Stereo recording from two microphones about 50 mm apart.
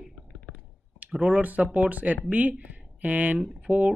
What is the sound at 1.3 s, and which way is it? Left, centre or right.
Speech, right.